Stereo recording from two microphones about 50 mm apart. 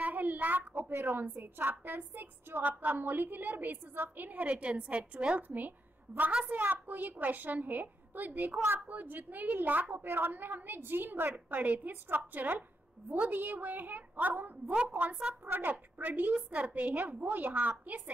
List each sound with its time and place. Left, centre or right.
0.0 s a child's voice: right
6.5 s a woman's voice: right
15.7 s a woman's voice: right